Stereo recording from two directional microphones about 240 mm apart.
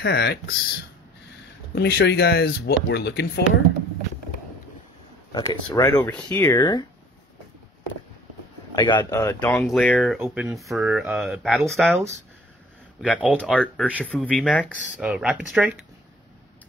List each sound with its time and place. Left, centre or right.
0.0 s speech: left
1.8 s speech: left
5.3 s speech: centre
8.7 s speech: centre
10.1 s speech: centre
13.1 s speech: centre
14.2 s speech: centre
14.7 s speech: centre